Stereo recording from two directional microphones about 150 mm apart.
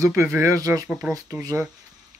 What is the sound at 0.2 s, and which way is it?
A man's voice, 20° right (ahead or behind).